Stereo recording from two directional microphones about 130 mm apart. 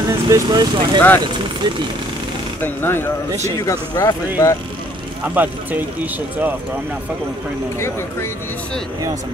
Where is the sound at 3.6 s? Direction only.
30° left (ahead or behind).